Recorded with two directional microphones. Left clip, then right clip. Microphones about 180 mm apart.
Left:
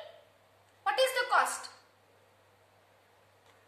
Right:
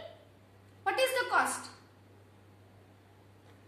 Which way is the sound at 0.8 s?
30° left (ahead or behind).